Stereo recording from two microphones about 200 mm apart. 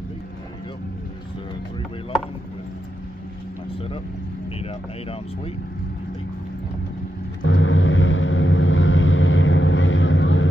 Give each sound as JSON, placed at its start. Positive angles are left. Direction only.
{"t": 7.4, "sound": "vehicle", "side_deg": 75}